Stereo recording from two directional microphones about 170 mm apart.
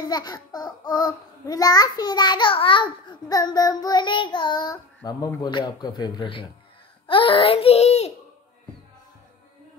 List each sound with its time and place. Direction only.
0.0 s a child's voice: 25° left (ahead or behind); by 8.1 s 40° left (ahead or behind)